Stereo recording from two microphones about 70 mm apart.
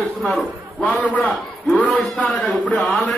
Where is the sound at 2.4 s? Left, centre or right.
Left.